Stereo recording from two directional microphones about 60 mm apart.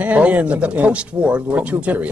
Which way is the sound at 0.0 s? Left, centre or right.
Right.